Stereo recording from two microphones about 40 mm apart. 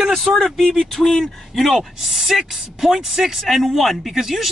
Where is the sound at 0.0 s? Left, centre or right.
Centre.